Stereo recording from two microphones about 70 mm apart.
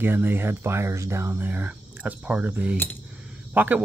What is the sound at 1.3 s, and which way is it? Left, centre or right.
Speech, right.